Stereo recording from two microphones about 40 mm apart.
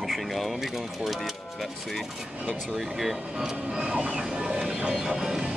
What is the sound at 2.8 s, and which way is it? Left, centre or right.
Speech, centre.